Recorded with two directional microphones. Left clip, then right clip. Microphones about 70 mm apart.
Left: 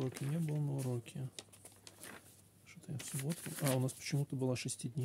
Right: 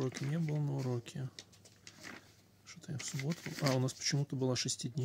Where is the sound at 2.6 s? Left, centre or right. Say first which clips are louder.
Right 5 dB; centre.